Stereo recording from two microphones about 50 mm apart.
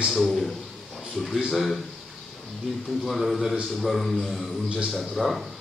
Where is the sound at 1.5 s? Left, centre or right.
Centre.